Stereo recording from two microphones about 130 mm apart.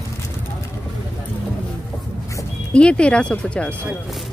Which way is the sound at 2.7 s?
10° left (ahead or behind).